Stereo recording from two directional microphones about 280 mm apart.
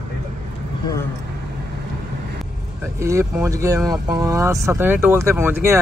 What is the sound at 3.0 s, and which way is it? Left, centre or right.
Speech, centre.